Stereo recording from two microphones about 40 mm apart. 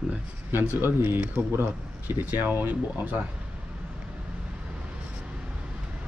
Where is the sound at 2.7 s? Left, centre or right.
Right.